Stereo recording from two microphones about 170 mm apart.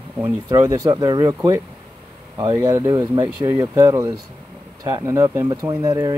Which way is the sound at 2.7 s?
20° right (ahead or behind).